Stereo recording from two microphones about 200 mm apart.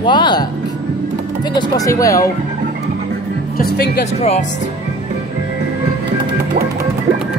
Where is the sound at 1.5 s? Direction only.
20° left (ahead or behind).